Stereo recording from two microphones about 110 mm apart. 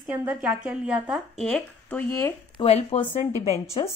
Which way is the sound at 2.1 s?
25° left (ahead or behind).